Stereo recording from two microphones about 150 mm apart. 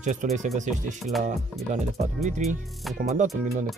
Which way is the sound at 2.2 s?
50° right (ahead or behind).